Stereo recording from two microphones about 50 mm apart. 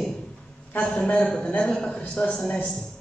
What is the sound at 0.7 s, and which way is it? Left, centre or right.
A man's voice, left.